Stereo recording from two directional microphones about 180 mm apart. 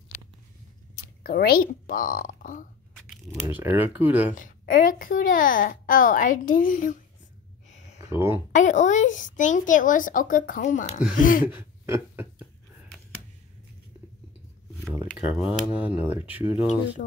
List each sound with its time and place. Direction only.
1.2 s a child's voice: 55° left (ahead or behind)
3.4 s speech: 10° right (ahead or behind)
4.4 s a child's voice: 50° left (ahead or behind)
7.7 s a sound: 40° left (ahead or behind)
8.0 s speech: 15° right (ahead or behind)
8.5 s a child's voice: 45° left (ahead or behind)
11.4 s a sound: 15° right (ahead or behind)
15.1 s speech: 5° right (ahead or behind)